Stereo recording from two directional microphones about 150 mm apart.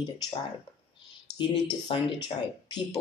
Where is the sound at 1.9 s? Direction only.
35° left (ahead or behind).